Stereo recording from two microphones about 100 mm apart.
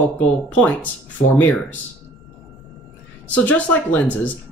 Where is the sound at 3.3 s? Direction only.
15° left (ahead or behind).